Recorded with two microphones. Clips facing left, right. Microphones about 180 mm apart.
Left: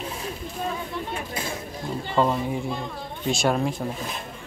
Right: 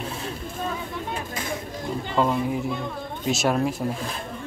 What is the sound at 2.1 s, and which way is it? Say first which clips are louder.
Speech: even; centre (ahead or behind).